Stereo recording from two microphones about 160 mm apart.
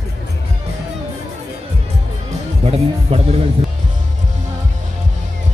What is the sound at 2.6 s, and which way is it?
Speech, 40° right (ahead or behind).